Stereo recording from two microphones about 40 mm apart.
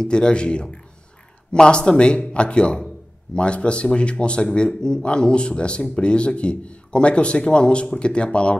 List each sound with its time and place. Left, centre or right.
0.0 s speech: left